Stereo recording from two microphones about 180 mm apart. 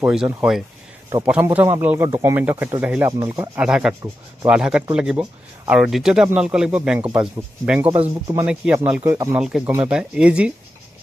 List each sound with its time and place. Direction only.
0.0 s speech: 5° right (ahead or behind)